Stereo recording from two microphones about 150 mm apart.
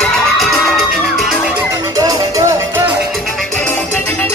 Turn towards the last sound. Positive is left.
turn(degrees=10)  # may be behind; listen again after turning